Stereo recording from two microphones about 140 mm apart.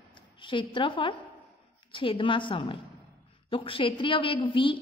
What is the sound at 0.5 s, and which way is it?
A woman's voice, 35° left (ahead or behind).